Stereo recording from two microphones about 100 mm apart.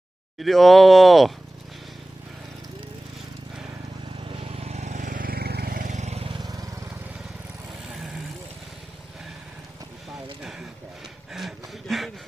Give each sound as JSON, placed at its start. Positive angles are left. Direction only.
{"t": 0.4, "sound": "speech", "side_deg": 0}
{"t": 4.3, "sound": "vehicle", "side_deg": -80}
{"t": 6.0, "sound": "vehicle", "side_deg": -90}
{"t": 11.3, "sound": "a sound", "side_deg": 0}